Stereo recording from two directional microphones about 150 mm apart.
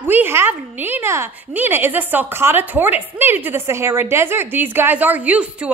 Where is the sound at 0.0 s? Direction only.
15° right (ahead or behind).